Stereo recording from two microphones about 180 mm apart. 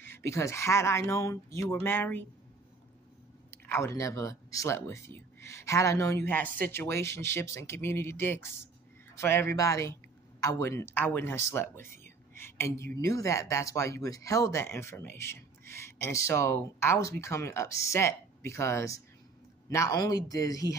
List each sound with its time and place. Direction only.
0.0 s speech: 15° left (ahead or behind)
3.4 s speech: 15° left (ahead or behind)